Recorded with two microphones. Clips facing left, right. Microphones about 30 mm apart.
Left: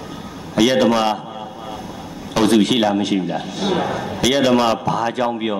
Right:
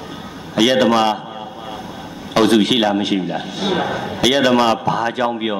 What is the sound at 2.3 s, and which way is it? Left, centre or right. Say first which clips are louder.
A man's voice: right 1 dB; centre.